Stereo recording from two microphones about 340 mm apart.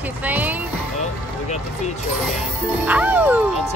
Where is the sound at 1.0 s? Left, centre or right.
Centre.